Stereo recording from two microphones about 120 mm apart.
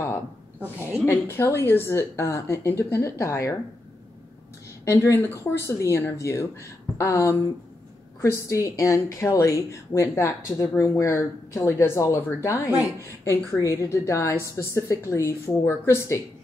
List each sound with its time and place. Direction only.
0.6 s a woman's voice: 15° right (ahead or behind)
1.0 s a woman's voice: 20° left (ahead or behind)
4.8 s a woman's voice: 20° left (ahead or behind)